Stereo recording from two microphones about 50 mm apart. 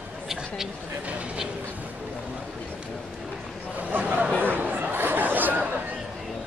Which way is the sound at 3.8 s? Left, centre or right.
Right.